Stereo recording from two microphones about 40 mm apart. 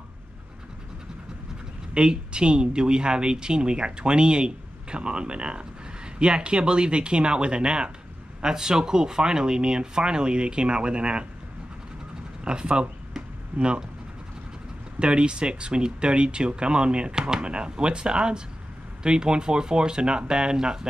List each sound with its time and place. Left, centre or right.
2.0 s speech: right
12.4 s speech: right
13.1 s a sound: centre
15.0 s speech: right